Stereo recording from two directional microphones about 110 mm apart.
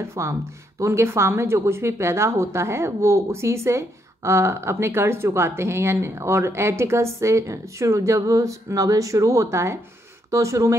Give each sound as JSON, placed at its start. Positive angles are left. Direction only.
{"t": 0.0, "sound": "speech", "side_deg": -25}